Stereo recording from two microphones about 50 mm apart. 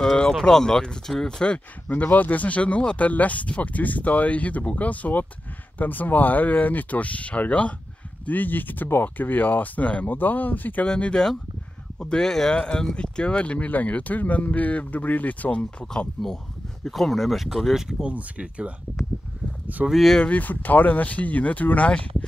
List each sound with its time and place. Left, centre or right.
0.3 s speech: centre
2.1 s speech: left
11.1 s speech: centre
16.2 s speech: centre
16.8 s speech: centre
18.0 s speech: right
19.9 s speech: centre
20.2 s speech: left